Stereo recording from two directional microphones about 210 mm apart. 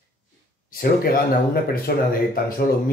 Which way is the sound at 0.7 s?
45° left (ahead or behind).